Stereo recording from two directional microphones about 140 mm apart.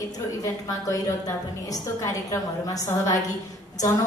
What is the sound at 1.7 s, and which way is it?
A woman's voice, 25° left (ahead or behind).